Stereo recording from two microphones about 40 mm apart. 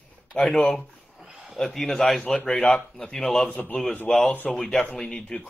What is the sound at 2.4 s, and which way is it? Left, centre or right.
Speech, left.